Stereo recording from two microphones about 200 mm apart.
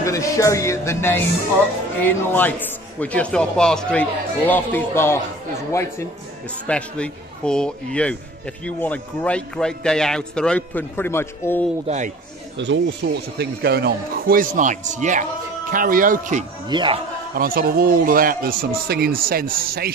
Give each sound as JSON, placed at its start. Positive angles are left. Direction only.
{"t": 0.0, "sound": "speech", "side_deg": 15}
{"t": 12.5, "sound": "a man's voice", "side_deg": -65}
{"t": 16.6, "sound": "speech", "side_deg": -25}
{"t": 17.4, "sound": "a man's voice", "side_deg": -45}